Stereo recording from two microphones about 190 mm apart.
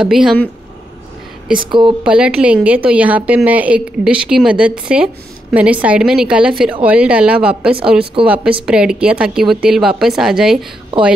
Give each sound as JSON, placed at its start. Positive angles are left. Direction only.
{"t": 0.0, "sound": "a woman's voice", "side_deg": -5}
{"t": 1.7, "sound": "a woman's voice", "side_deg": -25}
{"t": 2.0, "sound": "a woman's voice", "side_deg": -5}
{"t": 8.0, "sound": "a woman's voice", "side_deg": -25}
{"t": 8.3, "sound": "a woman's voice", "side_deg": -5}